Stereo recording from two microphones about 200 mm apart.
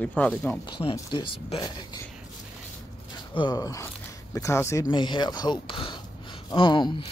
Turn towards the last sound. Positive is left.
turn(degrees=25)  # may be behind; listen again after turning